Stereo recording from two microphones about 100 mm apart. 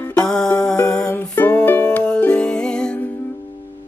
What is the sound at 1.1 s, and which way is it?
Music, 20° left (ahead or behind).